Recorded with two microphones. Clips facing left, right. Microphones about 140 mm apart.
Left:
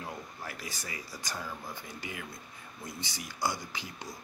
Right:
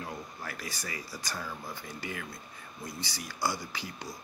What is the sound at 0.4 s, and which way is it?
Speech, 20° left (ahead or behind).